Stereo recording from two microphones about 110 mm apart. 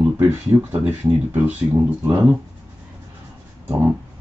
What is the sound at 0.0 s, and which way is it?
Speech, 15° right (ahead or behind).